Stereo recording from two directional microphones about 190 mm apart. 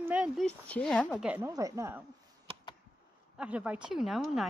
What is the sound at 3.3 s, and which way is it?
Speech, 5° right (ahead or behind).